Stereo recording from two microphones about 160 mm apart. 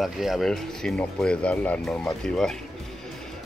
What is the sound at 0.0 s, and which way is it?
Speech, centre (ahead or behind).